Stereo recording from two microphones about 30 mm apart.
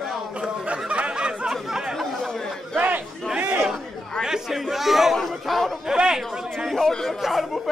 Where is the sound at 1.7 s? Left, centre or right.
Centre.